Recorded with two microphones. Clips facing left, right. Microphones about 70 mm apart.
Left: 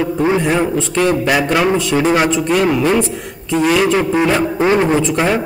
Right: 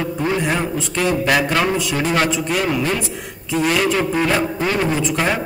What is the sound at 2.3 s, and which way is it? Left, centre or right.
A man's voice, centre.